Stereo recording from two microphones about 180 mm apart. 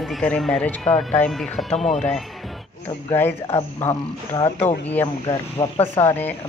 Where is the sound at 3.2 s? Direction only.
15° left (ahead or behind).